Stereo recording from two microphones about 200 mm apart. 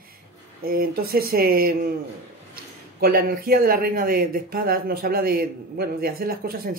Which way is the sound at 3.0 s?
50° right (ahead or behind).